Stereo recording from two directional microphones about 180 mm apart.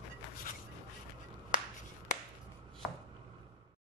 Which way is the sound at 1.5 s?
45° left (ahead or behind).